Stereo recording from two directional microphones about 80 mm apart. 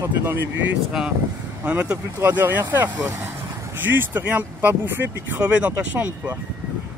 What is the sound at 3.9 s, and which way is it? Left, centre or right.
Speech, right.